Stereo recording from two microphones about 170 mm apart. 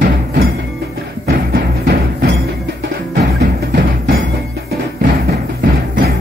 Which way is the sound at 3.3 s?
70° right (ahead or behind).